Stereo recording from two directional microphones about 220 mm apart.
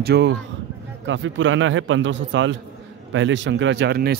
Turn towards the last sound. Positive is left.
turn(degrees=-45)  # may be behind; listen again after turning